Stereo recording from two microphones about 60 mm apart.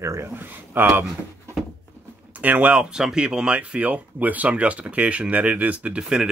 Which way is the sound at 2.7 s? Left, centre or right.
Centre.